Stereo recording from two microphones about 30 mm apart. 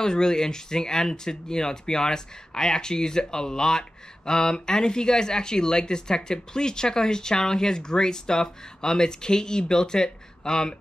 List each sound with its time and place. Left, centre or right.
0.0 s speech: left